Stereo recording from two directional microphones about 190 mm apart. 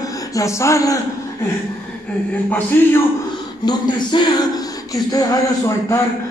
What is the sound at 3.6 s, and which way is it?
Speech, 25° left (ahead or behind).